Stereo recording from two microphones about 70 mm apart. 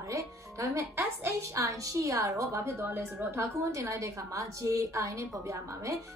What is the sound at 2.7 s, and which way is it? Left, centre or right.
Speech, right.